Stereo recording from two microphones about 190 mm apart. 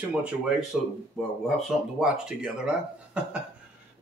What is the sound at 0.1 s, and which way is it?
Speech, 5° right (ahead or behind).